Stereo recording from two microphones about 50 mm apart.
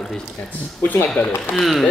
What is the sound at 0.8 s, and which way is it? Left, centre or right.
Speech, left.